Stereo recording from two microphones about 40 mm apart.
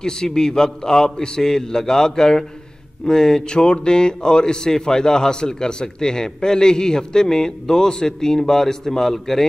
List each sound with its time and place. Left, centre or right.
0.0 s a man's voice: centre